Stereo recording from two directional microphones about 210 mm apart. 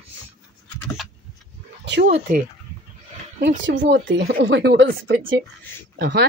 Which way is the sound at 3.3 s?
55° right (ahead or behind).